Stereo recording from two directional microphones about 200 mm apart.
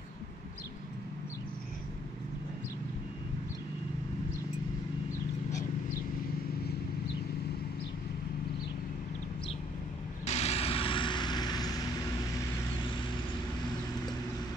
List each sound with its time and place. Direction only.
10.2 s vehicle: 30° left (ahead or behind)